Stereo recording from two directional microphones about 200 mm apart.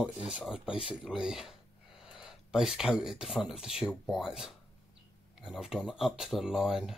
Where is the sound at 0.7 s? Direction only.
25° left (ahead or behind).